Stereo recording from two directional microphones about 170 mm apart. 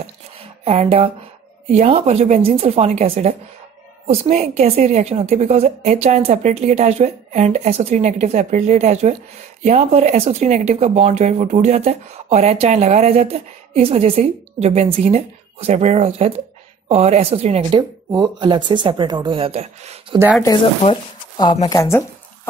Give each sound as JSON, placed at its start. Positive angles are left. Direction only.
{"t": 0.7, "sound": "speech", "side_deg": -35}
{"t": 18.1, "sound": "speech", "side_deg": -25}
{"t": 20.8, "sound": "speech", "side_deg": 30}